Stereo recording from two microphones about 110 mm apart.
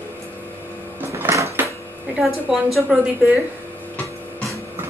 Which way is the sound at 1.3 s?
25° right (ahead or behind).